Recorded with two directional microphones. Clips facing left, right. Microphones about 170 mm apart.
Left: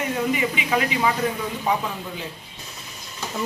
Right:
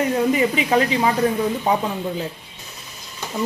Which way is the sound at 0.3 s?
40° right (ahead or behind).